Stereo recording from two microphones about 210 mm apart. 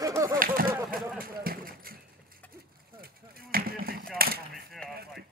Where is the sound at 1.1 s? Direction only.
45° right (ahead or behind).